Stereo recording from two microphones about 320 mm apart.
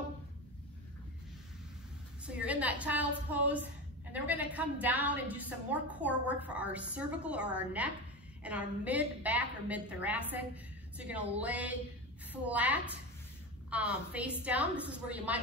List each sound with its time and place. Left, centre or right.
2.2 s a woman's voice: centre